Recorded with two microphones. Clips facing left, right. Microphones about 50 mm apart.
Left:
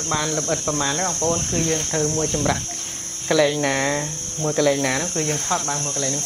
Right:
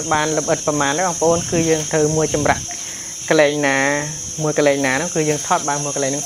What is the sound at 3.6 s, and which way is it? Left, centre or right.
Speech, right.